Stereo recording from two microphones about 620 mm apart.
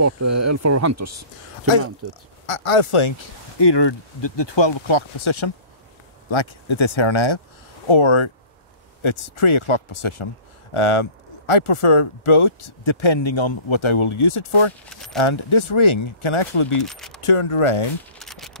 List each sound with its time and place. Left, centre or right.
0.0 s speech: right
2.4 s speech: left
16.8 s speech: centre
17.2 s speech: left
18.2 s a sound: centre